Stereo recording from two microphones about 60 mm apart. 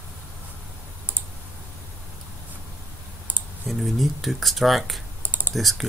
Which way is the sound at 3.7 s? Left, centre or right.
Centre.